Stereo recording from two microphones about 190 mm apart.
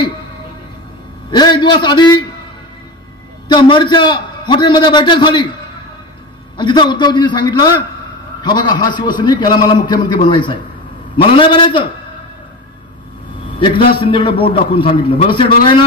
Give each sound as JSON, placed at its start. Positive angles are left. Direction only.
{"t": 1.3, "sound": "a man's voice", "side_deg": 25}
{"t": 3.4, "sound": "a man's voice", "side_deg": 25}
{"t": 6.5, "sound": "a man's voice", "side_deg": 25}
{"t": 14.0, "sound": "a man's voice", "side_deg": 30}